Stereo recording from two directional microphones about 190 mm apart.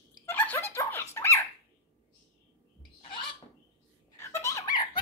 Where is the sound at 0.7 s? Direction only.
15° left (ahead or behind).